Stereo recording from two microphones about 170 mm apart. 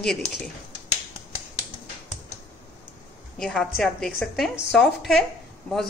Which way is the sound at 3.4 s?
Centre (ahead or behind).